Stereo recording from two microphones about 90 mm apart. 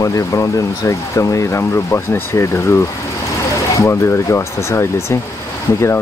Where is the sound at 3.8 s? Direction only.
30° left (ahead or behind).